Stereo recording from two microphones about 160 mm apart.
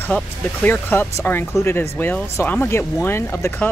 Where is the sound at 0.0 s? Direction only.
10° left (ahead or behind).